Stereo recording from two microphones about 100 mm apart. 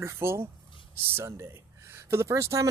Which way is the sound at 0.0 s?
25° right (ahead or behind).